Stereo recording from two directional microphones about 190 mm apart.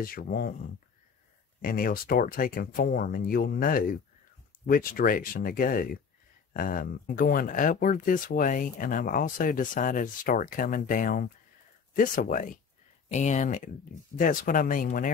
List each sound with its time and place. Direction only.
0.0 s speech: 50° left (ahead or behind)
1.6 s speech: 50° left (ahead or behind)